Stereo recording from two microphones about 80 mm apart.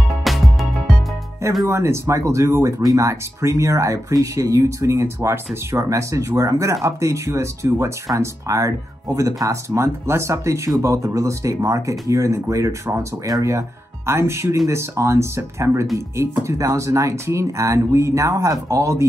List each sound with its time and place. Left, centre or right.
0.2 s music: centre
1.7 s speech: right